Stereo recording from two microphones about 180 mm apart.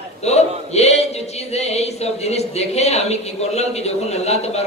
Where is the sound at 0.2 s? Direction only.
35° left (ahead or behind).